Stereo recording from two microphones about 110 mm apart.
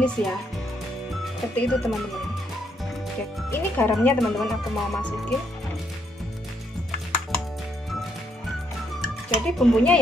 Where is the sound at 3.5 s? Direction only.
20° left (ahead or behind).